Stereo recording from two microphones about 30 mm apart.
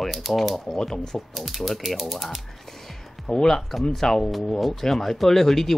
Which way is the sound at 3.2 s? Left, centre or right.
Centre.